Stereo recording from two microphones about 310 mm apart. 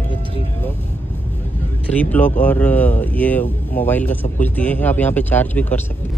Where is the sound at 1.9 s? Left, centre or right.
Centre.